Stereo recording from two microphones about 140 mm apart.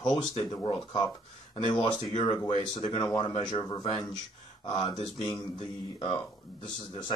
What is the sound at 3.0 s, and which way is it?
Speech, 30° left (ahead or behind).